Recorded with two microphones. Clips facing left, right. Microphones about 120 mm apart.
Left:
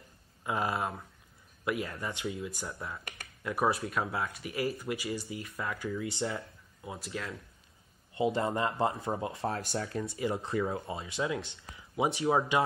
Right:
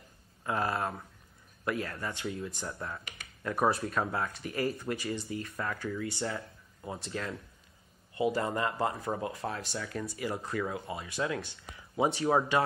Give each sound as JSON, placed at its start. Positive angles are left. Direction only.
{"t": 0.4, "sound": "speech", "side_deg": 15}
{"t": 5.8, "sound": "speech", "side_deg": 15}
{"t": 7.1, "sound": "speech", "side_deg": 5}
{"t": 8.1, "sound": "speech", "side_deg": 25}